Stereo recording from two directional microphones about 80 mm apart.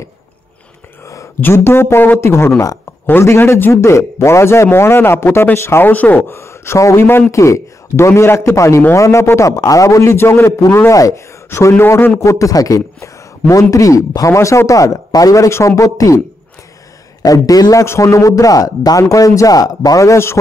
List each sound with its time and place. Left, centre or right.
1.0 s a sound: left
1.4 s a man's voice: left
3.7 s a man's voice: left
6.2 s a man's voice: left
11.5 s a man's voice: left
17.2 s a man's voice: left
17.8 s a man's voice: left